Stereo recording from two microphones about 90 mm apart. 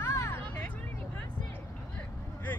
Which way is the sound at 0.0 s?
35° left (ahead or behind).